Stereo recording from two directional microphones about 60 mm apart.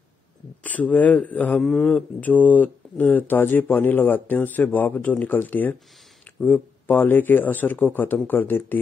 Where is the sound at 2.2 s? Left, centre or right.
Left.